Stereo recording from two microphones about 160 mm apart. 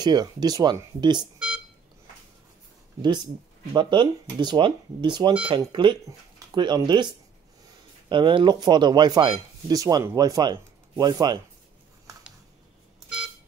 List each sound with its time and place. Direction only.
0.0 s speech: 25° right (ahead or behind)
3.0 s speech: 25° right (ahead or behind)